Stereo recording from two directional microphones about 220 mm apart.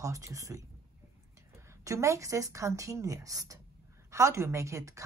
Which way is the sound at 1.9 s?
15° right (ahead or behind).